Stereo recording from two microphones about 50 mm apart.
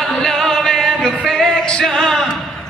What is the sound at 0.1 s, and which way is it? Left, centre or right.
Music, centre.